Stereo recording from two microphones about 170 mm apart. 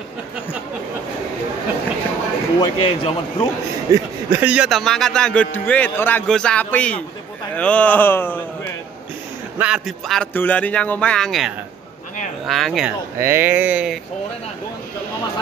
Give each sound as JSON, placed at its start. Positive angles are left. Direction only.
{"t": 2.6, "sound": "a man's voice", "side_deg": 30}
{"t": 3.9, "sound": "a man's voice", "side_deg": -10}
{"t": 9.6, "sound": "a man's voice", "side_deg": -5}
{"t": 13.2, "sound": "speech", "side_deg": -15}